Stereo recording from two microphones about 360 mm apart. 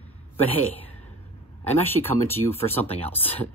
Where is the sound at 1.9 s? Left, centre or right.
Centre.